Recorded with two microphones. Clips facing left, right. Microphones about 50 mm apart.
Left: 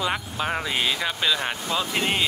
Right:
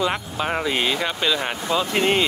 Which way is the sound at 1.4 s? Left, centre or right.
Centre.